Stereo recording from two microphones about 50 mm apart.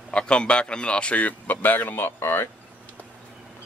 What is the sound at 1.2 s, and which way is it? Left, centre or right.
Speech, left.